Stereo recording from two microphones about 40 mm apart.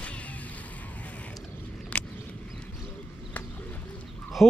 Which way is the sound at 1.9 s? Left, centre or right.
Left.